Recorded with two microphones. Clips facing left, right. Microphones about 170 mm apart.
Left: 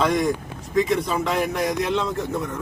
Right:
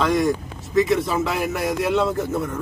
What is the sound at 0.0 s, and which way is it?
A man's voice, centre (ahead or behind).